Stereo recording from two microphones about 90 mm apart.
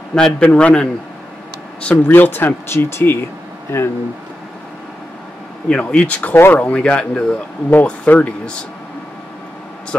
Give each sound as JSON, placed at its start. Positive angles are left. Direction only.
{"t": 0.1, "sound": "speech", "side_deg": 10}
{"t": 5.7, "sound": "speech", "side_deg": 10}